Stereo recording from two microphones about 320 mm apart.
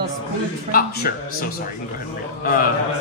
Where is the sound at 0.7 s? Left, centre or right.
Left.